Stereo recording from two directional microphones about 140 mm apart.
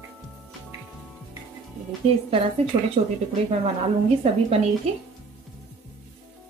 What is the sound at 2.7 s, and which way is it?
Speech, 45° right (ahead or behind).